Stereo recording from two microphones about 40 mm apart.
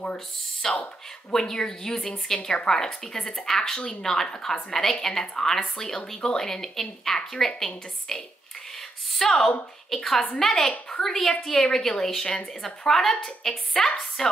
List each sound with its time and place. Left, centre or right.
0.6 s speech: centre
9.2 s a woman's voice: centre